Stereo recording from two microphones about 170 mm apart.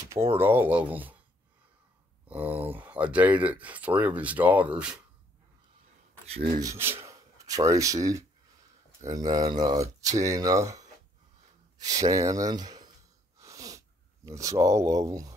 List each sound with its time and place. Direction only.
0.4 s speech: 10° right (ahead or behind)
2.2 s a sound: 10° right (ahead or behind)
2.6 s speech: 10° right (ahead or behind)
6.2 s rub: 35° right (ahead or behind)
6.6 s speech: 15° right (ahead or behind)
13.4 s a sound: 20° right (ahead or behind)